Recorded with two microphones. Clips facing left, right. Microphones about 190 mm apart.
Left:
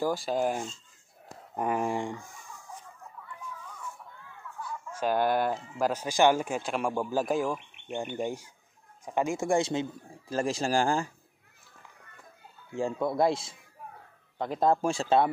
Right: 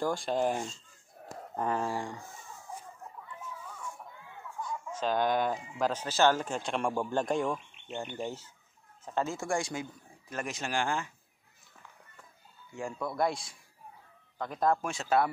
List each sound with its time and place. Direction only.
0.0 s speech: 5° left (ahead or behind)
3.4 s a sound: 10° right (ahead or behind)
4.5 s chicken: 10° right (ahead or behind)
4.9 s speech: 10° left (ahead or behind); by 11.1 s 35° left (ahead or behind)
13.0 s speech: 25° left (ahead or behind)